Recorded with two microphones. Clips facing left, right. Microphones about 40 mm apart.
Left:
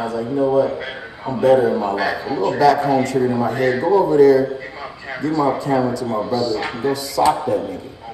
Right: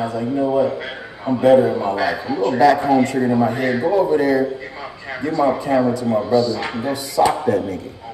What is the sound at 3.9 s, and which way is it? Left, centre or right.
Speech, centre.